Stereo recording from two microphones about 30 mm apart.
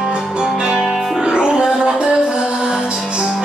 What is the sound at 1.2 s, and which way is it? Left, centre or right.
Music, right.